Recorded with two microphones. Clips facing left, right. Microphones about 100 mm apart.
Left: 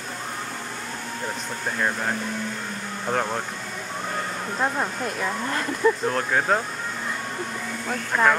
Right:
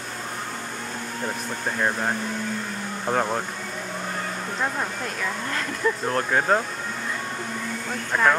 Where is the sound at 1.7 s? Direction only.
10° right (ahead or behind).